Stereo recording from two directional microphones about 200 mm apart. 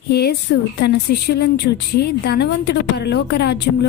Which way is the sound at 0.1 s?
55° left (ahead or behind).